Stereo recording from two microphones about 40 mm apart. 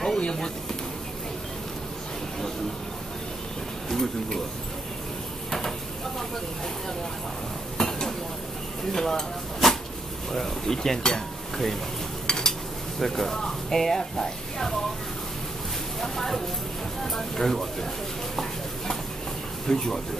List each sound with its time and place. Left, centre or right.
0.2 s a sound: centre
3.9 s speech: centre
7.7 s dishes: centre
8.9 s speech: centre
9.6 s a sound: centre
10.3 s cutlery: centre
13.0 s speech: centre
16.0 s speech: centre
18.3 s stir: centre
19.7 s speech: centre